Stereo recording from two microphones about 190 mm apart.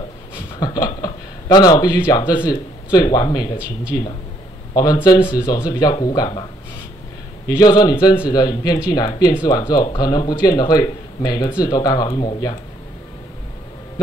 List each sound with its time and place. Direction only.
0.6 s a sound: 20° left (ahead or behind)
2.0 s speech: 25° left (ahead or behind)
3.5 s speech: 5° right (ahead or behind)
4.7 s speech: 20° left (ahead or behind)
7.4 s speech: 20° left (ahead or behind)